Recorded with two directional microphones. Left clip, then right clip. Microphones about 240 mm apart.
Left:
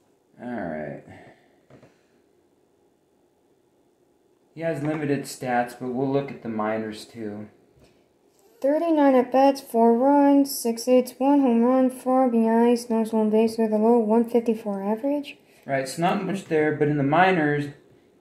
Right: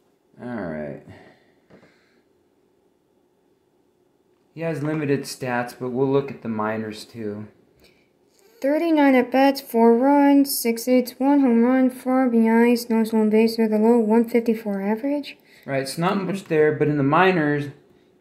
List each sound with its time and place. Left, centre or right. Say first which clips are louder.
4.6 s speech: right 1 dB; right
8.5 s speech: right 1 dB; right
15.6 s speech: even; right